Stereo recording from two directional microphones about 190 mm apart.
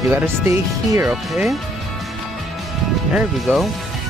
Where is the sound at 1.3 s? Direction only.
Centre (ahead or behind).